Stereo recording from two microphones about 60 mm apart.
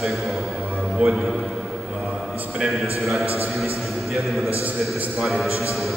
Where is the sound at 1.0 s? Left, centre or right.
Centre.